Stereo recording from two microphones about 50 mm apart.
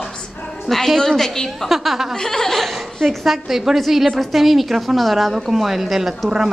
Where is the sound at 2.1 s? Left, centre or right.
Centre.